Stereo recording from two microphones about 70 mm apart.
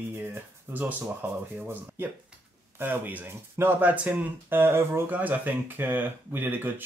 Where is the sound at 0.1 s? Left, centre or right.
Right.